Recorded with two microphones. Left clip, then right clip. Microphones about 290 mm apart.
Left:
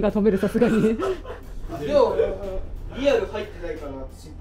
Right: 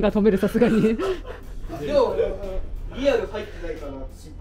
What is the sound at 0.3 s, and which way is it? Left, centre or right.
Speech, right.